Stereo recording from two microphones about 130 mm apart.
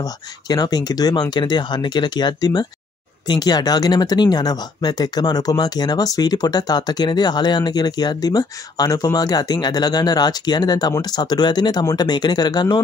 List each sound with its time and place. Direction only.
0.0 s speech: 30° left (ahead or behind)